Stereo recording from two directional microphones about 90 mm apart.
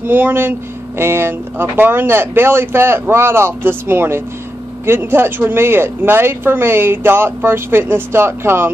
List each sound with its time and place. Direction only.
0.0 s speech: 20° right (ahead or behind)